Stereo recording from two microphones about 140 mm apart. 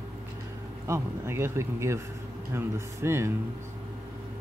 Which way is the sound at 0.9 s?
20° right (ahead or behind).